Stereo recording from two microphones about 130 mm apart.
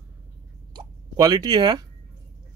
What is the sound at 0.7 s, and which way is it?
Speech, 30° right (ahead or behind).